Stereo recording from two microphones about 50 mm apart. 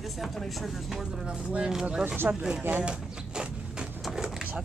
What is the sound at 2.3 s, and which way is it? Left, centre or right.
Speech, right.